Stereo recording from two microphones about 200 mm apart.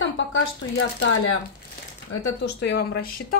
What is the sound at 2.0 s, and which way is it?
Speech, 60° left (ahead or behind).